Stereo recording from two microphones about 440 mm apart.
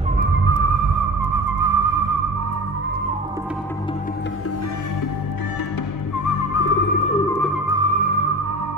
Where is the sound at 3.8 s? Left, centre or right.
Centre.